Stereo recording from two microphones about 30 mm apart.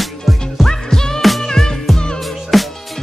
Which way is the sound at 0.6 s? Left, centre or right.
Centre.